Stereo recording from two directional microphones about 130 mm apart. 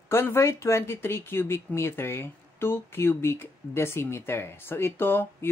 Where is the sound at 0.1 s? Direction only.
20° left (ahead or behind).